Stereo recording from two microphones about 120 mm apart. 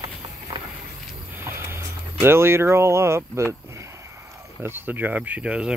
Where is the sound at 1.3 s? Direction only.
20° right (ahead or behind).